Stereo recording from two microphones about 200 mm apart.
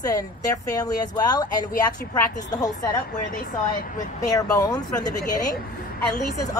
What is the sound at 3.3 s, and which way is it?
Speech, 45° left (ahead or behind).